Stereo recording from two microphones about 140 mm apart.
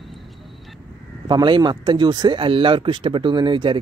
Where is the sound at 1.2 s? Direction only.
35° right (ahead or behind).